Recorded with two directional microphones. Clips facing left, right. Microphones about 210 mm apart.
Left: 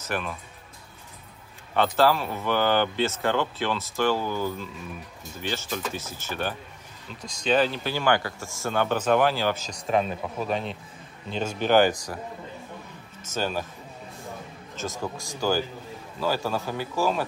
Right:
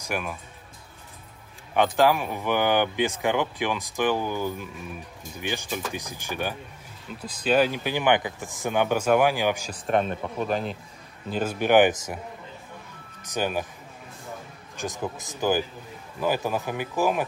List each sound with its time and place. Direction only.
0.0 s speech: 10° right (ahead or behind)
1.7 s speech: 15° right (ahead or behind)
13.2 s speech: 15° right (ahead or behind)
14.8 s speech: 20° right (ahead or behind)